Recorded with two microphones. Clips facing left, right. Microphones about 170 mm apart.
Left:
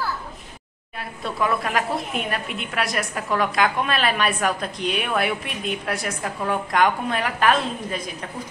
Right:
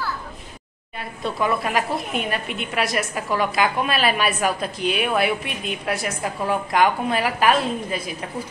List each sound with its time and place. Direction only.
0.9 s a woman's voice: centre (ahead or behind)